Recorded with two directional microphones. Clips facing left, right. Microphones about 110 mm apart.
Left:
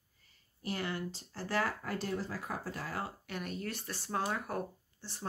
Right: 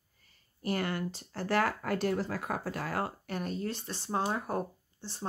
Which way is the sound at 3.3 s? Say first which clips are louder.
Right 5 dB; 35° right (ahead or behind).